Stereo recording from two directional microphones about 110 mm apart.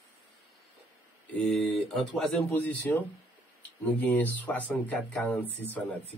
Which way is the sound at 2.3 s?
15° left (ahead or behind).